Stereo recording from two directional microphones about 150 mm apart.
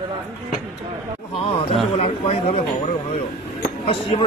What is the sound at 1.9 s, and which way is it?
Speech, 45° left (ahead or behind).